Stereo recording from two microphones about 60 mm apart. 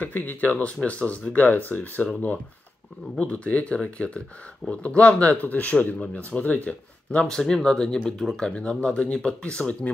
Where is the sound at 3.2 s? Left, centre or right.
Left.